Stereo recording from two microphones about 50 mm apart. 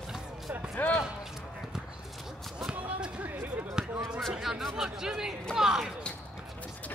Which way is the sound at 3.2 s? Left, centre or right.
Right.